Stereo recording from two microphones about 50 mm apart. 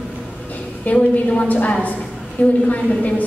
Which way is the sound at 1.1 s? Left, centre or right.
Left.